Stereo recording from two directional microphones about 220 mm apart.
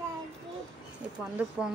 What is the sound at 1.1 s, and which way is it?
Speech, 5° right (ahead or behind).